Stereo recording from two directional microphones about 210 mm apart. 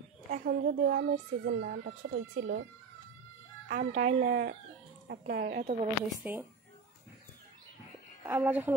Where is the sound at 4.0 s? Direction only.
50° right (ahead or behind).